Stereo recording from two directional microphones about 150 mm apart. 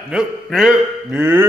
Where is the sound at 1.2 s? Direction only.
15° right (ahead or behind).